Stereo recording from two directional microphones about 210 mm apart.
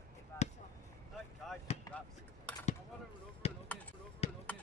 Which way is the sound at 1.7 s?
30° left (ahead or behind).